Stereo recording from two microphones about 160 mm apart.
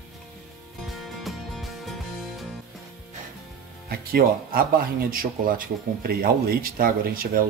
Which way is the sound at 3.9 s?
70° right (ahead or behind).